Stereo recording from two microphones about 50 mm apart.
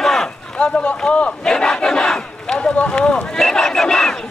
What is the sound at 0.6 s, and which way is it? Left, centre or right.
Battle cry, left.